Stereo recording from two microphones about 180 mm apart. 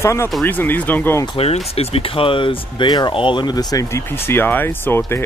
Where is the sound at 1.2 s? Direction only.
30° left (ahead or behind).